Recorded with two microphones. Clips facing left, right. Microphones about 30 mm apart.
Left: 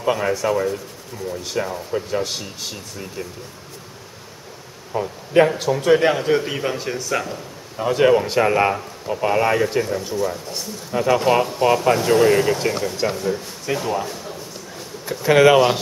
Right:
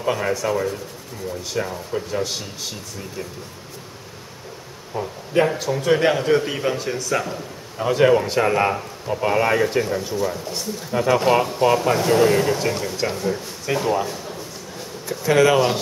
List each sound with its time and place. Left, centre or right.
0.0 s speech: centre
4.9 s speech: centre
15.0 s speech: centre